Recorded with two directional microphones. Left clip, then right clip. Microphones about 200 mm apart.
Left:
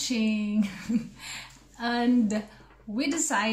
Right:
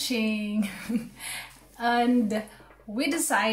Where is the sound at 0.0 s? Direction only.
Centre (ahead or behind).